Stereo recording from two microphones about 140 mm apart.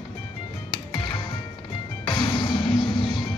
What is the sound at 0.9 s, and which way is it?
Music, 35° left (ahead or behind).